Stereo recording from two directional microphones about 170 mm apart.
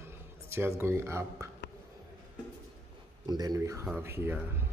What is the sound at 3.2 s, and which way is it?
Speech, 25° right (ahead or behind).